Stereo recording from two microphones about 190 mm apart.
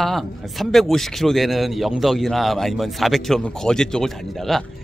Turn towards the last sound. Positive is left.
turn(degrees=0)  # may be behind; listen again after turning